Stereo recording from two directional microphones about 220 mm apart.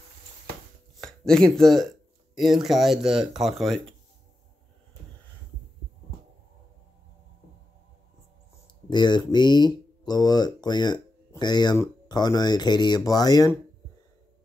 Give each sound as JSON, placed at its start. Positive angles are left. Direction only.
{"t": 1.0, "sound": "speech", "side_deg": 5}
{"t": 8.8, "sound": "speech", "side_deg": 20}